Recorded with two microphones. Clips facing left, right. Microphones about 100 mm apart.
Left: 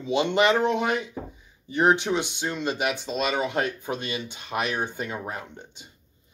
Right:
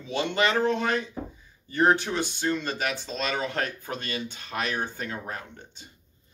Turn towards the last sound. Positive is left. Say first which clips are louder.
# left 2 dB
turn(degrees=15)  # may be behind; listen again after turning